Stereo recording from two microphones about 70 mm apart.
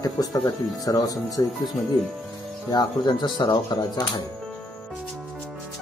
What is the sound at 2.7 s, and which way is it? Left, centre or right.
Speech, left.